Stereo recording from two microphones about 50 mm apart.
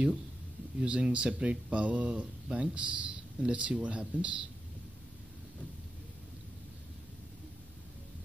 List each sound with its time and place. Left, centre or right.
0.7 s speech: centre